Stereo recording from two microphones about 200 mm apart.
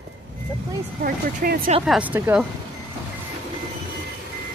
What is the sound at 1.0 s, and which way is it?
Speech, 45° right (ahead or behind).